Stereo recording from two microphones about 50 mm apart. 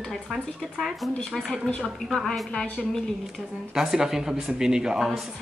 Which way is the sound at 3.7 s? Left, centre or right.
Centre.